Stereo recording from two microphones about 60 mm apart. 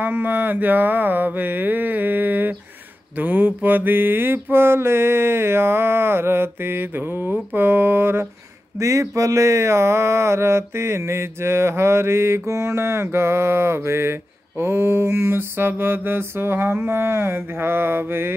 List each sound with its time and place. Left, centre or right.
0.0 s mantra: right
8.7 s a sound: right
14.6 s mantra: right